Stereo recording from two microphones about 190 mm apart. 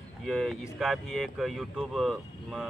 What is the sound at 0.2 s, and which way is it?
Speech, centre (ahead or behind).